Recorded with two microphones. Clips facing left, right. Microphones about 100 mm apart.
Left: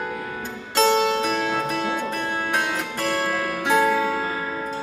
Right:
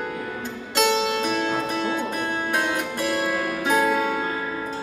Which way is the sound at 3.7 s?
10° right (ahead or behind).